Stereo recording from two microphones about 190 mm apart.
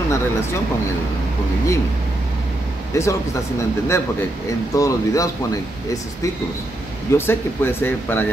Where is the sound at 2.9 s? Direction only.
15° left (ahead or behind).